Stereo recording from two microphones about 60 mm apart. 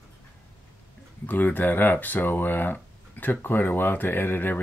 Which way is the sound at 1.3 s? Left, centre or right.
Left.